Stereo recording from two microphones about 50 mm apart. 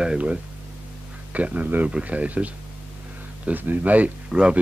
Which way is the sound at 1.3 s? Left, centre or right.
Right.